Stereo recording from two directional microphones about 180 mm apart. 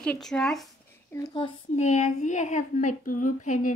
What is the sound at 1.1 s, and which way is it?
Speech, 20° left (ahead or behind).